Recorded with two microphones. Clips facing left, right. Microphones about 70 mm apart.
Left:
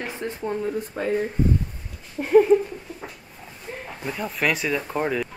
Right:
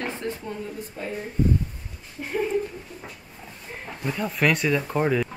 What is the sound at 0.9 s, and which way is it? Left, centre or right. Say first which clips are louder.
Speech: left 3 dB; left.